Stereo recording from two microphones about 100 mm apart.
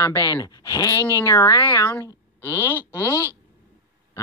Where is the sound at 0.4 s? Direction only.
35° left (ahead or behind).